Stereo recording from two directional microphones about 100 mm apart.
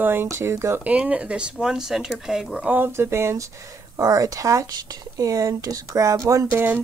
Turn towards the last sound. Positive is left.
turn(degrees=-25)  # may be behind; listen again after turning